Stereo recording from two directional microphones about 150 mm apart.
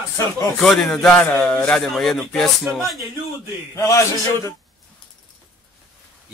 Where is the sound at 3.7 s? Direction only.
20° left (ahead or behind).